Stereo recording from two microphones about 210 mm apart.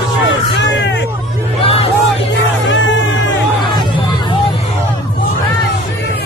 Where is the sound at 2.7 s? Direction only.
60° left (ahead or behind).